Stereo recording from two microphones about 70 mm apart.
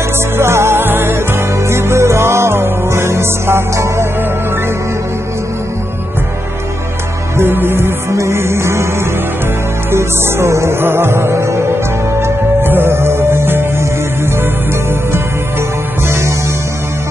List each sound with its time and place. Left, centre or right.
0.4 s music: right
7.3 s music: right
9.8 s music: right